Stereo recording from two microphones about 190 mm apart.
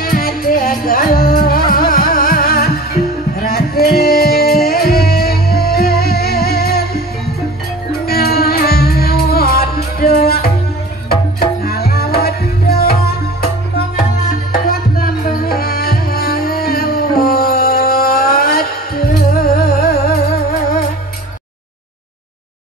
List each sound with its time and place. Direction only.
0.0 s music: 50° left (ahead or behind)
8.1 s music: 55° left (ahead or behind)